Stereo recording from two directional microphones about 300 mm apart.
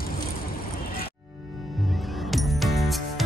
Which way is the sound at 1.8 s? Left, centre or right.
Centre.